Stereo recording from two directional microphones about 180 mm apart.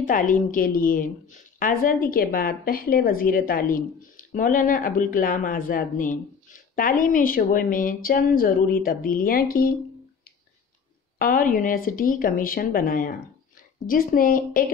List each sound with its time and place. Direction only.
0.0 s a woman's voice: 45° left (ahead or behind)
11.1 s a woman's voice: 50° left (ahead or behind)